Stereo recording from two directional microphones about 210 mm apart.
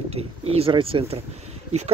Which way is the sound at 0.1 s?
30° right (ahead or behind).